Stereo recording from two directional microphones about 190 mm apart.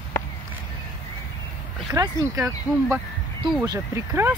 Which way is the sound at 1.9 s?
15° right (ahead or behind).